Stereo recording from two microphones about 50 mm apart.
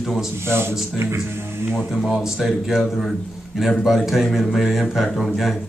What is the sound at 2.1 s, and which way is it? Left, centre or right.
Speech, centre.